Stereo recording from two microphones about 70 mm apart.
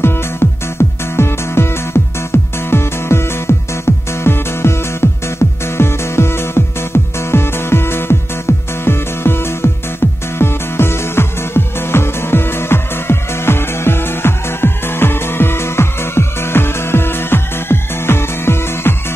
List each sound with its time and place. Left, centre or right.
0.0 s music: left